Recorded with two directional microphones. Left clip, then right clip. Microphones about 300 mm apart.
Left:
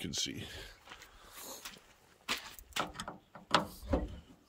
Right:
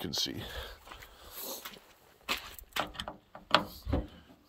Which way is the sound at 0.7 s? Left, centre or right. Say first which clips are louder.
Right 4 dB; right.